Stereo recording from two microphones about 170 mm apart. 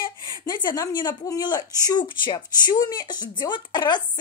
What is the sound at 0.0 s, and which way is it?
A woman's voice, 25° left (ahead or behind).